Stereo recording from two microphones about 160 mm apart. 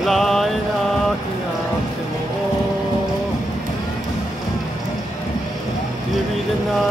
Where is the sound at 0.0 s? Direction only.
Centre (ahead or behind).